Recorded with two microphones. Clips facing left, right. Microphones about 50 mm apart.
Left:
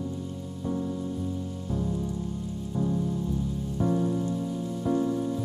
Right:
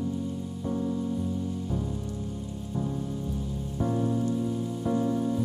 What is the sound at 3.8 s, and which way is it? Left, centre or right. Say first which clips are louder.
Rain on surface: left 2 dB; centre.